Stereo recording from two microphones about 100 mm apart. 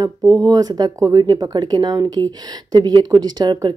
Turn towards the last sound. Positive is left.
turn(degrees=-40)  # may be behind; listen again after turning